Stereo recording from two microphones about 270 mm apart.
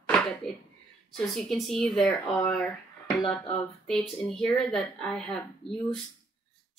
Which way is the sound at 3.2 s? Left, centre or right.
Centre.